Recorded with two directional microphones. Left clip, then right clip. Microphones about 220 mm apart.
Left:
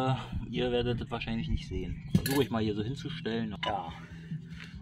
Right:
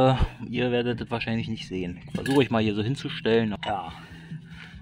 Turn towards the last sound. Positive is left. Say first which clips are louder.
# right 12 dB
turn(degrees=-50)  # may be behind; listen again after turning